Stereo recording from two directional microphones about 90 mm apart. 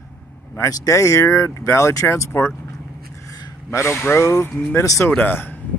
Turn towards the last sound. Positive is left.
turn(degrees=20)  # may be behind; listen again after turning